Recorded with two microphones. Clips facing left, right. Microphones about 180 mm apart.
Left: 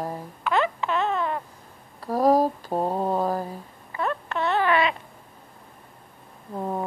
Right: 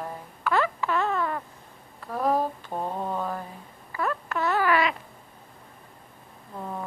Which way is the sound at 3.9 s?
25° left (ahead or behind).